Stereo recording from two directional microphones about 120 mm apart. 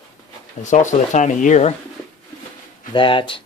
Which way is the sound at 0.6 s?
90° left.